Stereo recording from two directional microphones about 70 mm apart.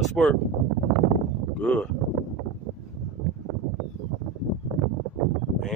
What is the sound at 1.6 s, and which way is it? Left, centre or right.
Speech, centre.